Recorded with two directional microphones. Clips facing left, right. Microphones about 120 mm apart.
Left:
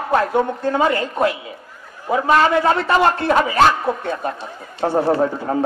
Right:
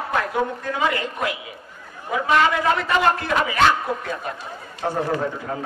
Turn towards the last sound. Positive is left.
turn(degrees=35)  # may be behind; listen again after turning